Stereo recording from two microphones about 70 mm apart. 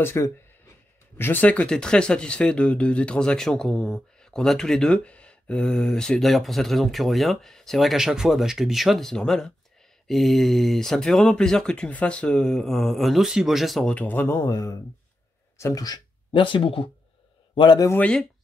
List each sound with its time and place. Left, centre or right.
0.0 s speech: left; by 13.8 s centre
13.8 s speech: left
14.4 s speech: left
15.7 s speech: left